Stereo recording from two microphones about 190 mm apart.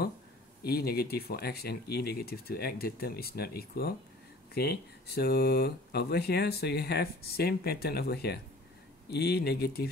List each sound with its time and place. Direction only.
0.7 s speech: 55° left (ahead or behind)